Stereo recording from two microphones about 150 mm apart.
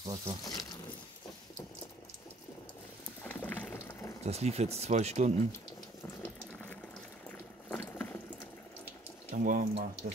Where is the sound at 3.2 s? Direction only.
10° left (ahead or behind).